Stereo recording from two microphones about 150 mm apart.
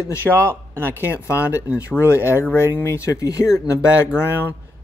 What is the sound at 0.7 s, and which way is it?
Speech, 15° right (ahead or behind).